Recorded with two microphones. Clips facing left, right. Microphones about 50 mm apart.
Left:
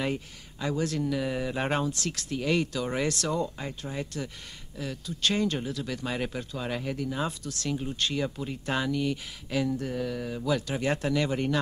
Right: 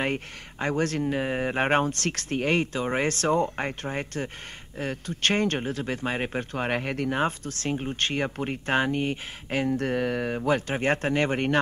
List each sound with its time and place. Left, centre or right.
0.0 s speech: right
3.4 s speech: right